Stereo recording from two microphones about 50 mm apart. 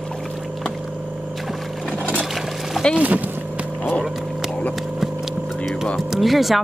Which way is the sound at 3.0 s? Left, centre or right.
Right.